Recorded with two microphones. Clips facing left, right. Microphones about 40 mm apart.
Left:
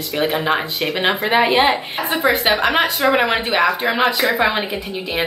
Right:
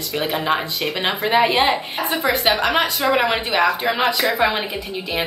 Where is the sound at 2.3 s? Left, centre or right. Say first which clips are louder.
Left 2 dB; centre.